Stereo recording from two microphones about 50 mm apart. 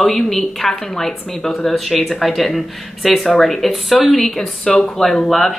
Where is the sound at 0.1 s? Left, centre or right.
Centre.